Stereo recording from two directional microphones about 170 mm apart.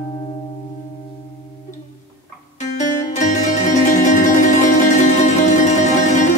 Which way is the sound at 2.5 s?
45° left (ahead or behind).